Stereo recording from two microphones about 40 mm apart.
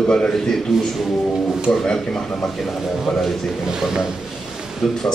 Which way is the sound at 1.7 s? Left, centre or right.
Centre.